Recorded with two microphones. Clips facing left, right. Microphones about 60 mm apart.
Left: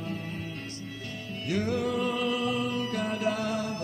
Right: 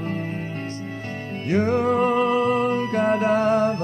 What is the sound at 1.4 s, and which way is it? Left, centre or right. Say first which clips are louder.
Music: right 9 dB; right.